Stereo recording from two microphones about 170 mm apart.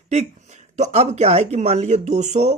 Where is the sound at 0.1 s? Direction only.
40° right (ahead or behind).